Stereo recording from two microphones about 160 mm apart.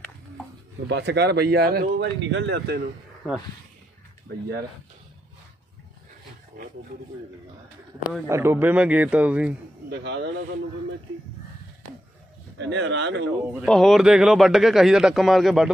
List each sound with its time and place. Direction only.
0.8 s speech: 90° right
6.5 s roaring cats: 55° right (ahead or behind)
8.3 s speech: 15° right (ahead or behind)
9.8 s speech: 90° right
12.5 s speech: 90° right
13.7 s speech: centre (ahead or behind)